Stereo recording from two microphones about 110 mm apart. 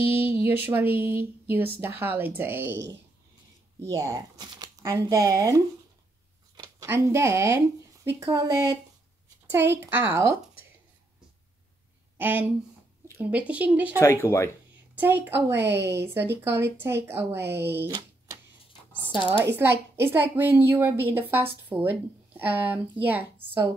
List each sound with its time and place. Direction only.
0.1 s a sound: 15° right (ahead or behind)
1.8 s a woman's voice: 20° right (ahead or behind)
3.8 s a woman's voice: 30° right (ahead or behind)
6.5 s a sound: 40° right (ahead or behind)
6.9 s a woman's voice: 25° right (ahead or behind)
12.2 s speech: 15° right (ahead or behind)
13.9 s speech: 20° left (ahead or behind)
15.0 s a woman's voice: 15° right (ahead or behind)
19.4 s a woman's voice: 20° right (ahead or behind)